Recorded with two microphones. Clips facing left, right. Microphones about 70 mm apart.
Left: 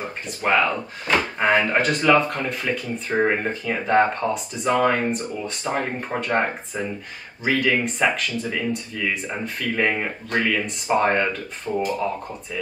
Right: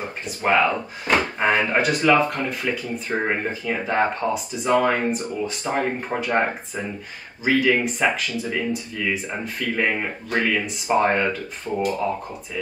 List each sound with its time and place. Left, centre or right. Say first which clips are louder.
0.4 s speech: right 1 dB; centre